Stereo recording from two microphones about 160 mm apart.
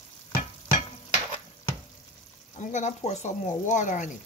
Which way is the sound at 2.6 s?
50° left (ahead or behind).